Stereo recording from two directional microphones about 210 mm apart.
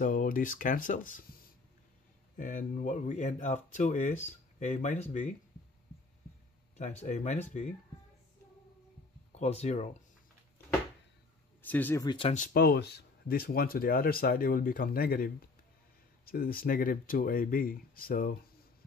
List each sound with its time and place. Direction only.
0.0 s speech: 40° left (ahead or behind)
2.3 s speech: 40° left (ahead or behind)
6.8 s speech: 35° left (ahead or behind)
9.3 s speech: 30° left (ahead or behind)
11.6 s speech: 10° left (ahead or behind)
12.4 s speech: 45° left (ahead or behind)